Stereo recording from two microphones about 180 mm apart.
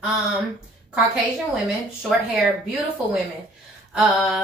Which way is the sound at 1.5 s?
5° right (ahead or behind).